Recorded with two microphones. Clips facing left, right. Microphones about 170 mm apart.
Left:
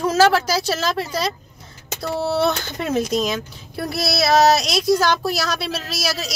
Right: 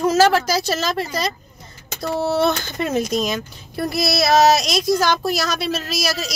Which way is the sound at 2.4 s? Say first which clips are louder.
Right 1 dB; 5° left (ahead or behind).